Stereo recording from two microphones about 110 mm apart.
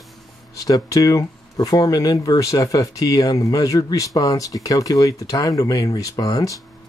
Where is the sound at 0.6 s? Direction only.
35° left (ahead or behind).